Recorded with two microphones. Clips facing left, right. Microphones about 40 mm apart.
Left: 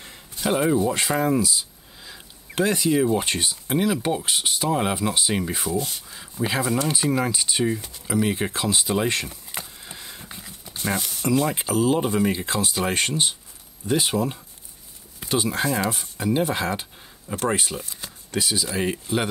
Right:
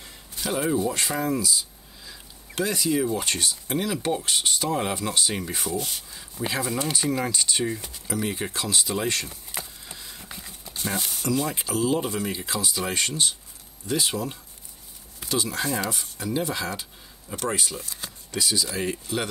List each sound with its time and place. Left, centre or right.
0.0 s a sound: left
0.7 s speech: left
6.4 s speech: centre
9.5 s a sound: centre
10.2 s horse: centre
10.7 s horse: left
11.0 s speech: right
11.2 s speech: left